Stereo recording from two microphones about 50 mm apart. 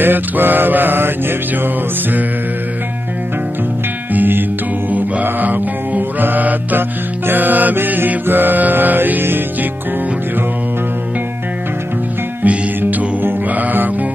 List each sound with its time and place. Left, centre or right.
0.0 s music: right
4.1 s music: right
12.4 s music: right
13.2 s mantra: right